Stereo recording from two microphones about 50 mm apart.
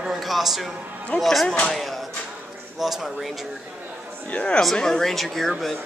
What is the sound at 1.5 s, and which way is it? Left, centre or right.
Speech, centre.